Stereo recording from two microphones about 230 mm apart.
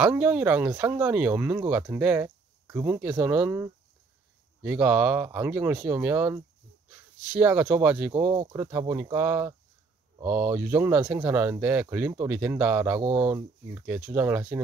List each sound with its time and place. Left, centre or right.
0.0 s speech: centre; by 8.6 s right
8.6 s speech: centre